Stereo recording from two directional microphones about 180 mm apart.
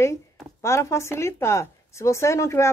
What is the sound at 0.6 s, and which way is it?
Speech, 15° left (ahead or behind).